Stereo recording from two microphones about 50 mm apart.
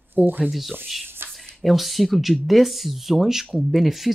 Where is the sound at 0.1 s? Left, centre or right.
Right.